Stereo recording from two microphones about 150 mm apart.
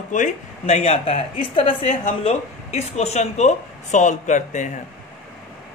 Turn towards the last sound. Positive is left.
turn(degrees=55)  # may be behind; listen again after turning